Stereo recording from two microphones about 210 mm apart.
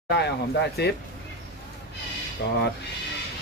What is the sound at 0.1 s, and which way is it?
Speech, 50° left (ahead or behind).